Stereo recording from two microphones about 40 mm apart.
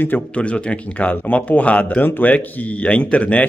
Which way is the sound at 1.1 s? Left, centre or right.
Left.